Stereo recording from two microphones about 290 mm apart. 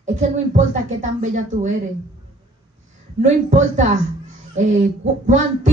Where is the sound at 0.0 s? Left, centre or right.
Right.